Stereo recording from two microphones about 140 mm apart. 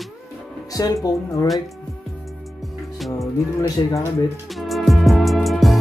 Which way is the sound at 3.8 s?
30° left (ahead or behind).